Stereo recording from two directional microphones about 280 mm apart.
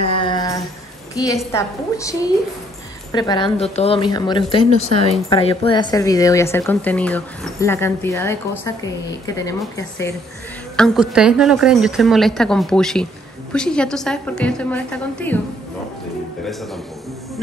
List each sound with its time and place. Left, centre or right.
0.0 s a sound: centre
1.1 s a woman's voice: centre
10.8 s a woman's voice: centre